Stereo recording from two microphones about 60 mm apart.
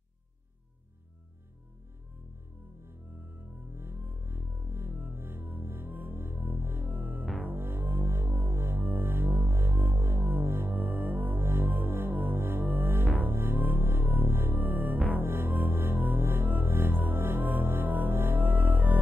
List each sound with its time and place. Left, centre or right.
3.7 s music: right